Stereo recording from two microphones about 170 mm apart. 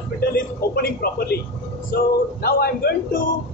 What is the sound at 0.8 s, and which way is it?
Speech, 65° left (ahead or behind).